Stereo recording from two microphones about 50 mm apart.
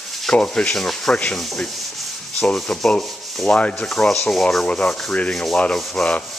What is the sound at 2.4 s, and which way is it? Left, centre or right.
Speech, centre.